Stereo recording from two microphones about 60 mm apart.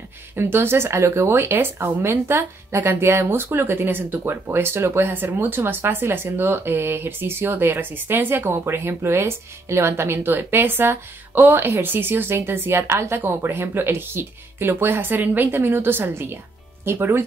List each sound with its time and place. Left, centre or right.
0.4 s speech: right